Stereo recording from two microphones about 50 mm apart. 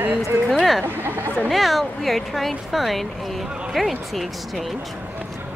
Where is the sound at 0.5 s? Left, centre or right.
Centre.